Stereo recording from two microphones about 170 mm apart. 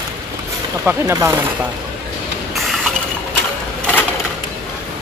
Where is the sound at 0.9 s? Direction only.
15° right (ahead or behind).